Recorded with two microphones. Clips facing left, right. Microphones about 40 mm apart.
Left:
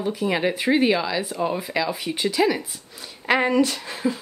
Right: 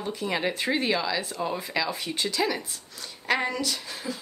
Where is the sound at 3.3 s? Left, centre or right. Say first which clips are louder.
Left 6 dB; left.